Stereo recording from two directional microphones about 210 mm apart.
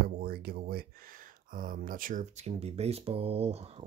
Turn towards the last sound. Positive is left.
turn(degrees=-30)  # may be behind; listen again after turning